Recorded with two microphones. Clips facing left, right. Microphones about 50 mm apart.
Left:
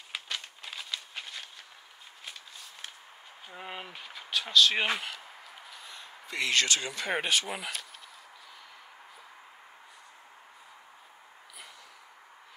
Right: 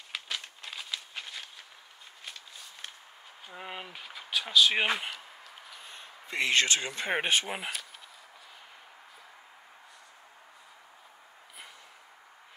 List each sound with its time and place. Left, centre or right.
0.1 s a sound: centre
3.4 s speech: centre
5.9 s speech: right